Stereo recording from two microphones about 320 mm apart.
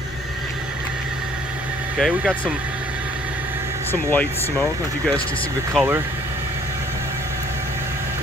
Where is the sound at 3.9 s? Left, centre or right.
Centre.